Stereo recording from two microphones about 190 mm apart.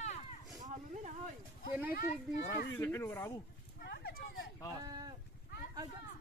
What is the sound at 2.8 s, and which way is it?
Speech, 10° left (ahead or behind).